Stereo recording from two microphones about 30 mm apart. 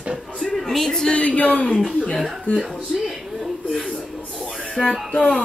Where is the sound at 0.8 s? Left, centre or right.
Left.